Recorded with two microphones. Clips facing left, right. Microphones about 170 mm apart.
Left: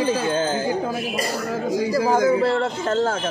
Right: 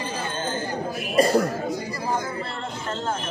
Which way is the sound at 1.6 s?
90° left.